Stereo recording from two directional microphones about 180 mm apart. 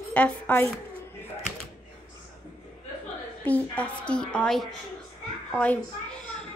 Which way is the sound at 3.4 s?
10° left (ahead or behind).